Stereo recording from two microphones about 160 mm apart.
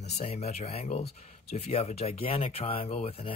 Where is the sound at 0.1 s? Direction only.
40° left (ahead or behind).